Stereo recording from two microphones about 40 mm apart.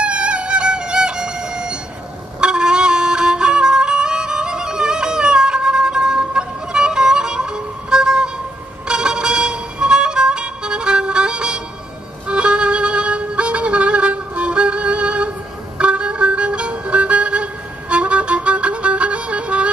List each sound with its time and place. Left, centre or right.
0.0 s music: right